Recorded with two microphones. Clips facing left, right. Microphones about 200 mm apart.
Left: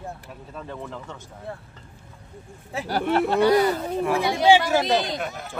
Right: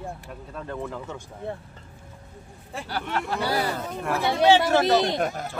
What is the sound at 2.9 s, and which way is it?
Speech, 35° left (ahead or behind).